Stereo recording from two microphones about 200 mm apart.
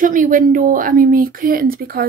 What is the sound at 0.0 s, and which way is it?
Speech, 40° right (ahead or behind).